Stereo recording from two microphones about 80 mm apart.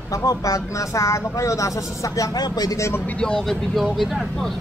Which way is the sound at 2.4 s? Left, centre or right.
Left.